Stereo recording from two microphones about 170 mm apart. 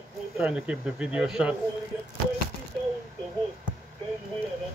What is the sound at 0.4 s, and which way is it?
Speech, 5° right (ahead or behind).